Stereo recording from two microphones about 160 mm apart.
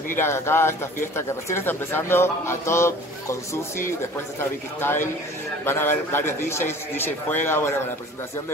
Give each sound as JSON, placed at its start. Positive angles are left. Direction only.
{"t": 0.2, "sound": "a man's voice", "side_deg": 15}